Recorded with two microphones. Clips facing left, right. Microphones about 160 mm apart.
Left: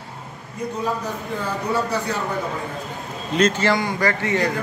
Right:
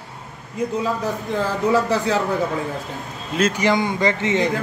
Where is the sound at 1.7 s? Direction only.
90° right.